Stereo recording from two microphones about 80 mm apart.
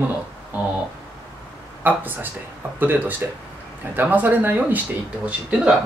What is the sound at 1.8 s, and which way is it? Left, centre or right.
Speech, right.